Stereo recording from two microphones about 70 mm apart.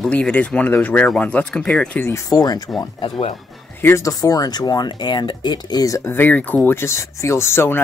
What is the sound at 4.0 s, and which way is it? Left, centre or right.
Speech, left.